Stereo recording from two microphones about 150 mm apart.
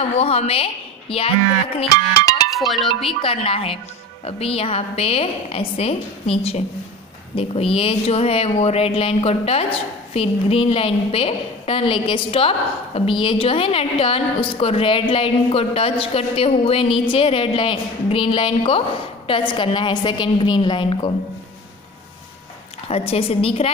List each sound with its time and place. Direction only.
0.1 s a woman's voice: 45° left (ahead or behind)
2.1 s music: 25° left (ahead or behind)
2.5 s speech: centre (ahead or behind)
2.9 s speech: 35° left (ahead or behind)
22.8 s speech: 40° left (ahead or behind)